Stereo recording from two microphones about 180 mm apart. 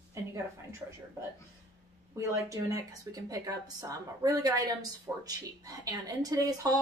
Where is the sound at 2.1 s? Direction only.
20° right (ahead or behind).